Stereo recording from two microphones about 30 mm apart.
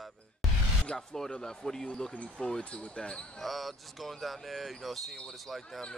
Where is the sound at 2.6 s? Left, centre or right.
Left.